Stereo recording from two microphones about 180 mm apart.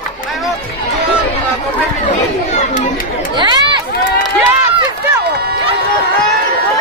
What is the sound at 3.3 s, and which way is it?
Chatter, 25° right (ahead or behind).